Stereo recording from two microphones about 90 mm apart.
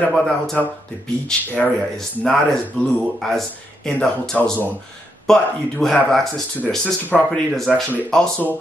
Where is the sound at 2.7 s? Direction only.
10° left (ahead or behind).